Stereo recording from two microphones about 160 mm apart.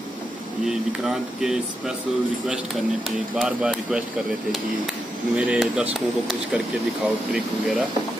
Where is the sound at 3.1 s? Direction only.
Centre (ahead or behind).